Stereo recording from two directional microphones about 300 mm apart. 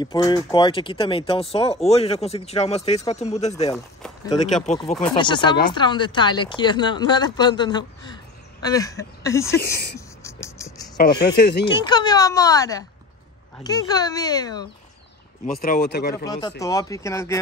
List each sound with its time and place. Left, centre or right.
0.0 s speech: centre
9.6 s speech: left
9.9 s a sound: centre
11.1 s speech: centre
11.3 s speech: left
11.6 s speech: centre
15.6 s speech: left
16.3 s speech: centre